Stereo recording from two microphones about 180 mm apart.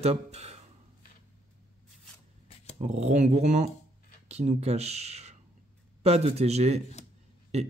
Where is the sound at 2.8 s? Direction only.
40° right (ahead or behind).